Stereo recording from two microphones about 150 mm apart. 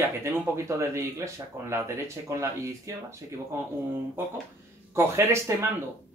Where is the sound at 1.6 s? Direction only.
20° right (ahead or behind).